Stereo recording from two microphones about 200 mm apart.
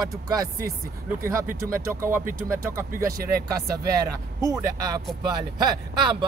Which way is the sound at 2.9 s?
45° right (ahead or behind).